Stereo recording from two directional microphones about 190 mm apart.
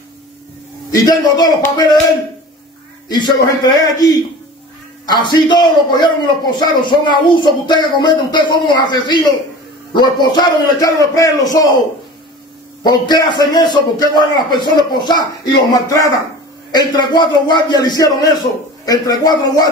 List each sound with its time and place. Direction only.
0.9 s a man's voice: 20° left (ahead or behind)
3.1 s a man's voice: 25° left (ahead or behind)
12.8 s a man's voice: 20° left (ahead or behind)